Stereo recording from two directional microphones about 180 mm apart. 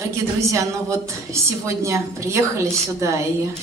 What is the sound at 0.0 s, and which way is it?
A woman's voice, 15° right (ahead or behind).